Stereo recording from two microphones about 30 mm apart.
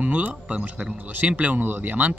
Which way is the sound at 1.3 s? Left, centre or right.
Right.